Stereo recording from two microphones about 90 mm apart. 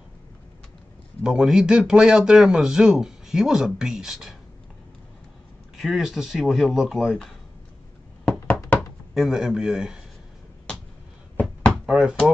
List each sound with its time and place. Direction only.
1.2 s speech: 5° right (ahead or behind)
5.8 s speech: centre (ahead or behind)
9.1 s speech: 5° right (ahead or behind)
11.3 s knock: 10° left (ahead or behind)
11.8 s speech: 5° right (ahead or behind)